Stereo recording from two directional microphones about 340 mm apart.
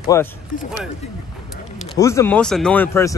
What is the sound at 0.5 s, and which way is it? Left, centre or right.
Speech, left.